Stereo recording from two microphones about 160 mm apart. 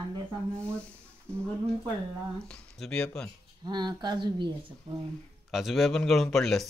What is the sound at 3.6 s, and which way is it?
Speech, 25° right (ahead or behind).